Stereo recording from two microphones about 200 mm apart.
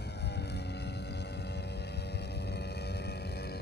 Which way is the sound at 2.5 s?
55° left (ahead or behind).